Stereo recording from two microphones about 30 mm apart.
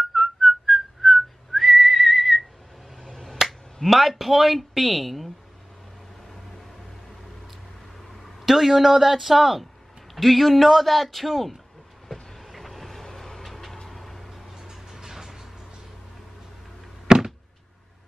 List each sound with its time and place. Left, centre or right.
0.1 s whistling: centre
3.0 s finger snapping: left
3.8 s a man's voice: centre
8.2 s a man's voice: centre
10.1 s a man's voice: centre
12.1 s vehicle: centre
14.5 s music: centre
17.1 s a sound: centre